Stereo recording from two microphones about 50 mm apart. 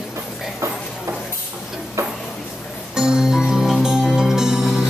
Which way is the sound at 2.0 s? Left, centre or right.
Right.